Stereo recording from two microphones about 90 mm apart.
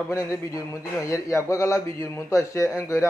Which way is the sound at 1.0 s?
35° left (ahead or behind).